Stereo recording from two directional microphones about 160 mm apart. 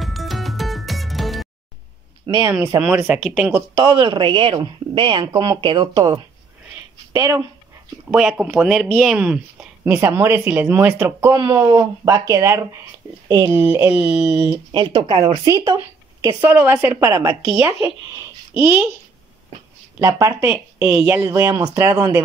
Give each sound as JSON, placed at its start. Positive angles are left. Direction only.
{"t": 0.0, "sound": "music", "side_deg": 0}
{"t": 2.2, "sound": "speech", "side_deg": -25}
{"t": 2.5, "sound": "a woman's voice", "side_deg": -10}
{"t": 3.7, "sound": "speech", "side_deg": -30}
{"t": 8.1, "sound": "a woman's voice", "side_deg": -5}
{"t": 14.7, "sound": "speech", "side_deg": -30}
{"t": 16.4, "sound": "a woman's voice", "side_deg": -10}
{"t": 20.0, "sound": "a woman's voice", "side_deg": -20}